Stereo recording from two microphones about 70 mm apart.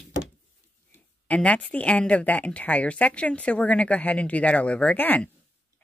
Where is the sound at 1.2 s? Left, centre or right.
Centre.